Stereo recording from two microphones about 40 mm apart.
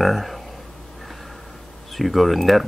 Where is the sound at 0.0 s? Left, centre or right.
Centre.